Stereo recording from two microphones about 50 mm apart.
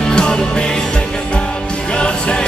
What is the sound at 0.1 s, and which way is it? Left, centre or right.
Music, centre.